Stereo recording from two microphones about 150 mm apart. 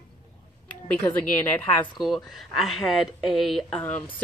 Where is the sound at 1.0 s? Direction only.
15° left (ahead or behind).